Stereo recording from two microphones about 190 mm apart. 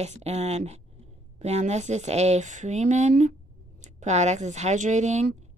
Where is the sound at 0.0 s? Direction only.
35° right (ahead or behind).